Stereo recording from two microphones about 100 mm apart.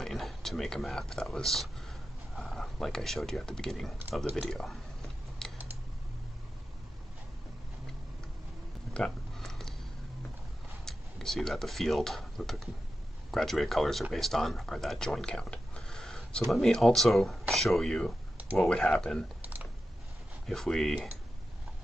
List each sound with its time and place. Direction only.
0.0 s speech: centre (ahead or behind)
4.5 s a sound: 5° left (ahead or behind)
8.9 s a sound: 5° left (ahead or behind)
10.9 s speech: 5° left (ahead or behind)
19.4 s typing: 15° right (ahead or behind)
20.4 s speech: 5° left (ahead or behind)